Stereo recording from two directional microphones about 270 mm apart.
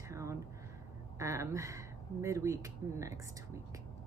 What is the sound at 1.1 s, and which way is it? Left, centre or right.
Speech, centre.